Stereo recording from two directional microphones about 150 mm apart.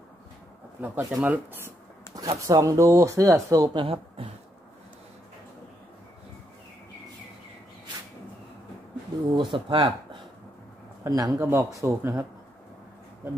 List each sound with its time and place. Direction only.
0.7 s speech: 10° right (ahead or behind); by 4.3 s 35° right (ahead or behind)
9.3 s speech: 30° right (ahead or behind)
11.1 s speech: 25° right (ahead or behind)